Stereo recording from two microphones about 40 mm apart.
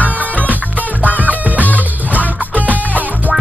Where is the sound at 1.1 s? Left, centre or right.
Right.